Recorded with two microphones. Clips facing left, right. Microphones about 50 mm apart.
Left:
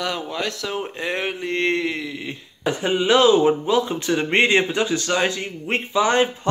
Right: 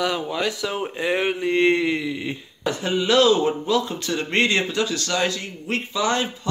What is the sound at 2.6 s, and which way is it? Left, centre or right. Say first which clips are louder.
Speech: left 2 dB; left.